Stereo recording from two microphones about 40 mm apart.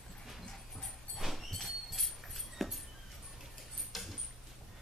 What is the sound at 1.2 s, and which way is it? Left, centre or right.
Dog, centre.